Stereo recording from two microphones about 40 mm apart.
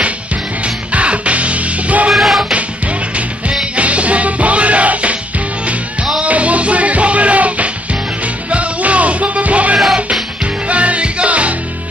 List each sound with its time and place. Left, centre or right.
0.9 s music: right
2.1 s music: centre
3.7 s music: right
6.2 s music: right